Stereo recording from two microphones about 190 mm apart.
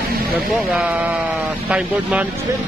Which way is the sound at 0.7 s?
5° right (ahead or behind).